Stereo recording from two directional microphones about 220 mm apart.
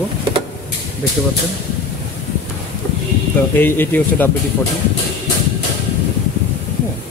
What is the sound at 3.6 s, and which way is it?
Speech, 10° left (ahead or behind).